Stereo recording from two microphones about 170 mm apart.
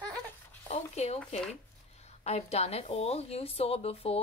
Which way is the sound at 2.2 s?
40° left (ahead or behind).